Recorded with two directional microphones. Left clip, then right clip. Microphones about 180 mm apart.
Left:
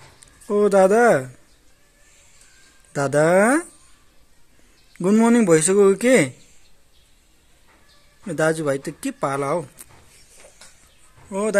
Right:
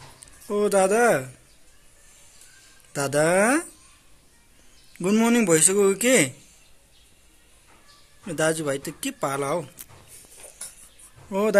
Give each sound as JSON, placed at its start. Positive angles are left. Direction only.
{"t": 0.5, "sound": "speech", "side_deg": 35}
{"t": 2.9, "sound": "speech", "side_deg": 30}
{"t": 4.9, "sound": "speech", "side_deg": 30}
{"t": 8.3, "sound": "speech", "side_deg": 30}
{"t": 11.2, "sound": "speech", "side_deg": 0}